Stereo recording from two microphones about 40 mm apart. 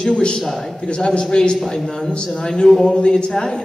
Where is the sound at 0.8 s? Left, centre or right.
Left.